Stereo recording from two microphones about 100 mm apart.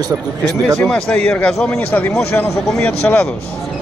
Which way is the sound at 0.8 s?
15° left (ahead or behind).